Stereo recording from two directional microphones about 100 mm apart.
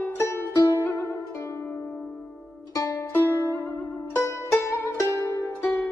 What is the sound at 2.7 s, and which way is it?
Music, 30° left (ahead or behind).